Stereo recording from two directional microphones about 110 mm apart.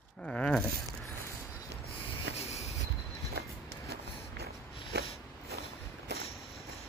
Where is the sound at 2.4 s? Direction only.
75° left (ahead or behind).